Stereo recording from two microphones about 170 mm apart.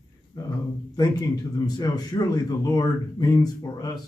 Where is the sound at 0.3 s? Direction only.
20° left (ahead or behind).